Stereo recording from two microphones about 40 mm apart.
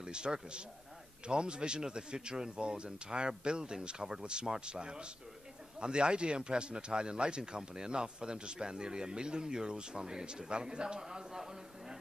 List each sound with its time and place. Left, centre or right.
0.0 s speech: right